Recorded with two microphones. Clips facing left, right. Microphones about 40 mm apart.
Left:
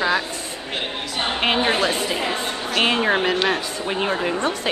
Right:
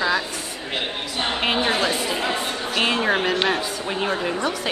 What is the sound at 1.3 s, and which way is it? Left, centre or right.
A woman's voice, centre.